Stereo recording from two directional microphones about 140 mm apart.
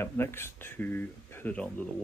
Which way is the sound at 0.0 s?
15° left (ahead or behind).